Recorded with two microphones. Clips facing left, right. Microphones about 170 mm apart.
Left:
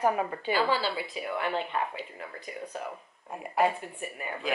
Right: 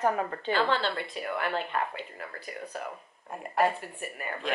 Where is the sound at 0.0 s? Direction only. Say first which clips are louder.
Left 1 dB; 10° left (ahead or behind).